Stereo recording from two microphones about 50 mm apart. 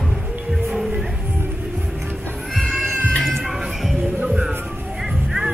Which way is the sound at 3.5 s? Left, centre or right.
Centre.